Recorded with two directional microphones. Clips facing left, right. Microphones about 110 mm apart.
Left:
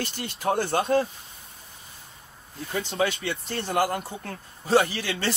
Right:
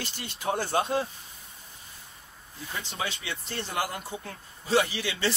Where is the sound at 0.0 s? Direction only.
50° left (ahead or behind); by 1.0 s 70° left (ahead or behind).